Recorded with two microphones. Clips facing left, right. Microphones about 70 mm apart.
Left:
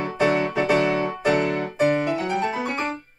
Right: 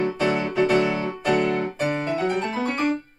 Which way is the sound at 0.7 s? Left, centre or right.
Left.